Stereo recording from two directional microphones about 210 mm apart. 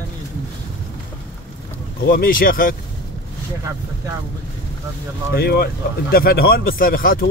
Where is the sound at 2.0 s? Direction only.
45° left (ahead or behind).